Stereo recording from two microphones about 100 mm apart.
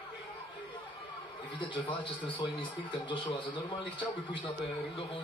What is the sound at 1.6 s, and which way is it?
A man's voice, 55° left (ahead or behind).